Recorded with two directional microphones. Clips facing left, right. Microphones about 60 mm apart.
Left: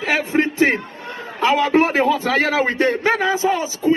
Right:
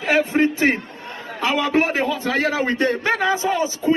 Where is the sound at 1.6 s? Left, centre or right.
Left.